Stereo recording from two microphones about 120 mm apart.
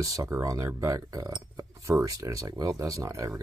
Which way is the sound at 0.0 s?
30° right (ahead or behind).